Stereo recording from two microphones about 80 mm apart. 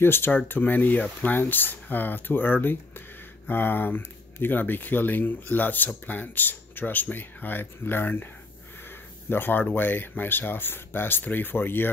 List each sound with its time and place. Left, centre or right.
0.0 s speech: left
9.3 s speech: left